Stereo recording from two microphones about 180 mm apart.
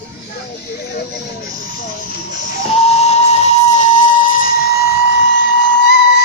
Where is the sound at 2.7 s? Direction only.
35° left (ahead or behind).